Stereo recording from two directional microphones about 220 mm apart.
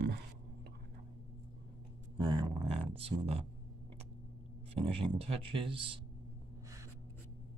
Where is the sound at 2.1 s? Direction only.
20° right (ahead or behind).